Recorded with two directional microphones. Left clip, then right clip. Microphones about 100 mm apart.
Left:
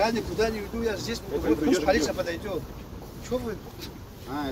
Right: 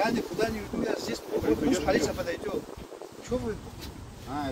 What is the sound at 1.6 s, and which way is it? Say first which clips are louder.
Speech: left 3 dB; 20° right (ahead or behind).